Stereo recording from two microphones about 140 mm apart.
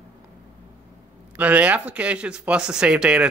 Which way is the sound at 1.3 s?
10° right (ahead or behind).